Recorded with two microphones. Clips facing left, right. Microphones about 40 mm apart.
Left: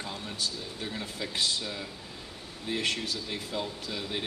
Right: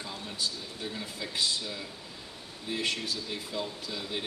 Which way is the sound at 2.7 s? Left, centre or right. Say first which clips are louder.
Left 1 dB; left.